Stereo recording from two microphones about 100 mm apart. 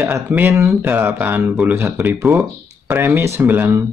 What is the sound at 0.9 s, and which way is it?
Speech, 20° right (ahead or behind).